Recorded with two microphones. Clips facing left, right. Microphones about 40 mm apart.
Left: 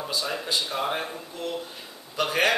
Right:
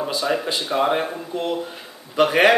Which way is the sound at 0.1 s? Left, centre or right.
Right.